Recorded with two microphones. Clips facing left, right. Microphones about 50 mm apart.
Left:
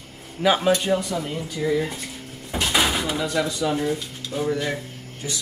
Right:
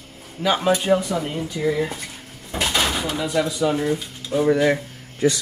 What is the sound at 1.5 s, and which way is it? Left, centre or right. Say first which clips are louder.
Speech: right 1 dB; centre.